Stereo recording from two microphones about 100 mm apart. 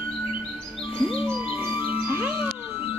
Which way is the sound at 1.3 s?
20° right (ahead or behind).